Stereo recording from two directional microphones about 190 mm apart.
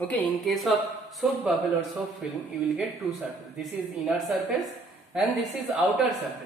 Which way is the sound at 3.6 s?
Centre (ahead or behind).